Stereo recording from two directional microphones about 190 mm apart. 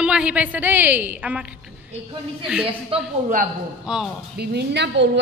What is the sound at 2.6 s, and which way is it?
Speech, 30° right (ahead or behind).